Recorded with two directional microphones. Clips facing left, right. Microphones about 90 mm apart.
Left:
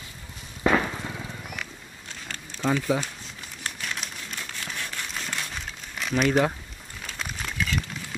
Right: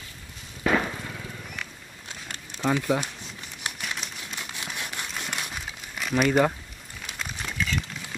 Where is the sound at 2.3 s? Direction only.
15° right (ahead or behind).